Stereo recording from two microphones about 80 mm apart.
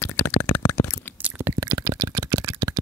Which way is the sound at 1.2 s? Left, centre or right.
Right.